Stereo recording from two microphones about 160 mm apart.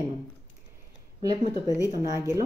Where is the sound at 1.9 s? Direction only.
20° right (ahead or behind).